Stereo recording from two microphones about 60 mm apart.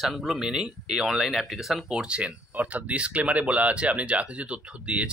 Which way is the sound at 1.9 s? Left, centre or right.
Centre.